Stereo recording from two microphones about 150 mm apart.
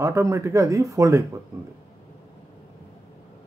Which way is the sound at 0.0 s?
20° right (ahead or behind).